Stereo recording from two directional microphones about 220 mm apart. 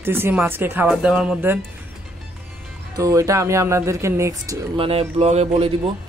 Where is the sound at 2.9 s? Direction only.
15° right (ahead or behind).